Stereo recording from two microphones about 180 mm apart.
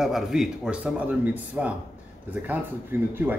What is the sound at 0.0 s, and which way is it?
Speech, centre (ahead or behind).